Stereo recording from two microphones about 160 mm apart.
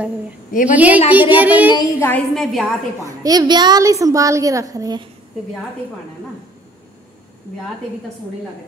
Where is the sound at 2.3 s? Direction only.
Centre (ahead or behind).